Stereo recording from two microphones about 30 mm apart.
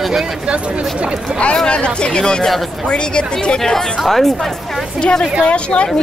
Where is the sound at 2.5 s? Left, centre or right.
Centre.